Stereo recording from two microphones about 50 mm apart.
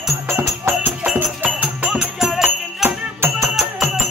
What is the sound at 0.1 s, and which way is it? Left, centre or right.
Music, right.